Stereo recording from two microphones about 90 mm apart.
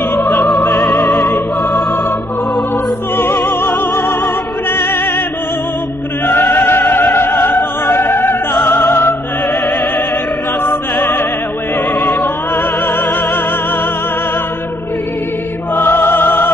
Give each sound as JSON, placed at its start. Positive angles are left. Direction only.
{"t": 0.2, "sound": "music", "side_deg": 0}
{"t": 4.6, "sound": "music", "side_deg": 25}
{"t": 6.2, "sound": "opera", "side_deg": 25}
{"t": 8.6, "sound": "music", "side_deg": 25}
{"t": 15.7, "sound": "music", "side_deg": 25}